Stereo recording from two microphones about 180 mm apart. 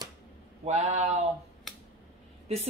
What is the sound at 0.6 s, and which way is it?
Speech, 40° right (ahead or behind).